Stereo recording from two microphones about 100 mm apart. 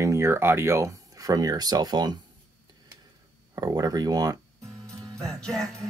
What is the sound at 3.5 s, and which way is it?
Speech, 40° right (ahead or behind).